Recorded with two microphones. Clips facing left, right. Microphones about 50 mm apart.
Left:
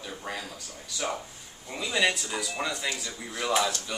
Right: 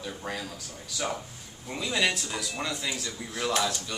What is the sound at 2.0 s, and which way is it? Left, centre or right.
Speech, centre.